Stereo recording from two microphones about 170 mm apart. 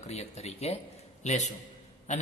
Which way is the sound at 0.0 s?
40° left (ahead or behind).